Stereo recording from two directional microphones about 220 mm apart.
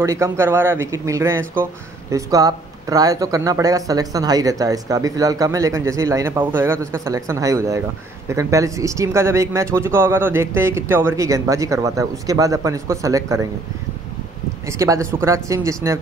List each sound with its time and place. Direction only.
0.0 s speech: 15° right (ahead or behind)
14.7 s speech: 15° right (ahead or behind)